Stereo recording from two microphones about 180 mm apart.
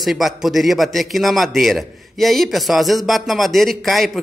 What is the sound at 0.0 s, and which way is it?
Speech, centre (ahead or behind).